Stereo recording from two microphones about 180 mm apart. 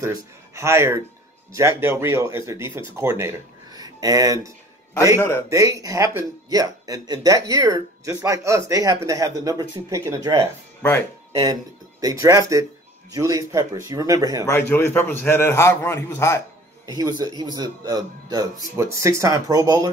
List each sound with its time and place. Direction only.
0.0 s speech: 15° right (ahead or behind)
5.1 s a man's voice: 15° left (ahead or behind)
5.5 s speech: 20° right (ahead or behind)
10.8 s speech: 15° left (ahead or behind)
12.0 s speech: 20° right (ahead or behind)
14.7 s a man's voice: 10° left (ahead or behind)
16.8 s speech: 20° right (ahead or behind)